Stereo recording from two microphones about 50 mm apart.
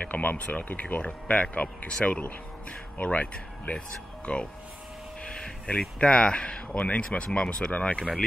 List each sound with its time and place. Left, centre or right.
0.0 s speech: left